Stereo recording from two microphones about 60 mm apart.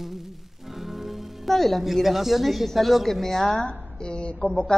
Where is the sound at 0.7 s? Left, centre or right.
Centre.